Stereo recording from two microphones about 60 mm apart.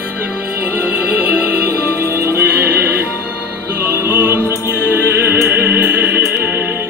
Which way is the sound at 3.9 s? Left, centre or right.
Right.